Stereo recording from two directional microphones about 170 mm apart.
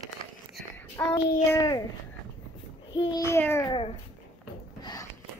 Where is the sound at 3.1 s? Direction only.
20° left (ahead or behind).